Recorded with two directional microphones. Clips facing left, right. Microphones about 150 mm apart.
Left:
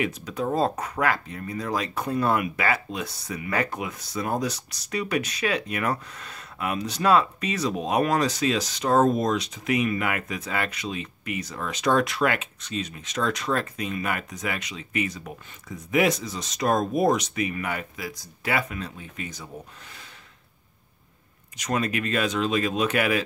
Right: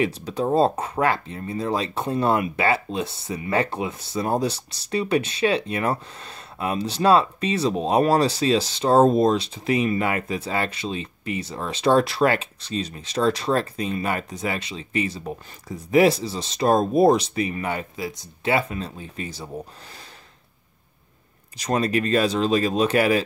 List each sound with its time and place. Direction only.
0.0 s speech: 30° right (ahead or behind)
21.5 s speech: 35° right (ahead or behind)